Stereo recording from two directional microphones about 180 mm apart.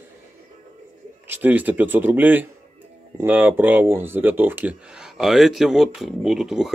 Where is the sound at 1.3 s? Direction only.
10° right (ahead or behind).